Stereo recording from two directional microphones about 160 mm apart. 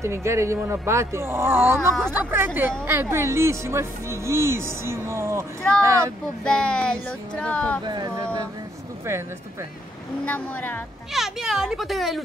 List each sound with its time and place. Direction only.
0.0 s speech: 15° right (ahead or behind)
6.4 s speech: 5° left (ahead or behind)
7.8 s speech: 25° right (ahead or behind)
10.2 s speech: 10° left (ahead or behind)
11.1 s speech: centre (ahead or behind)